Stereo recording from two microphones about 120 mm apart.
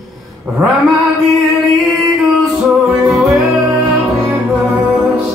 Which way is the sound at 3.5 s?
15° right (ahead or behind).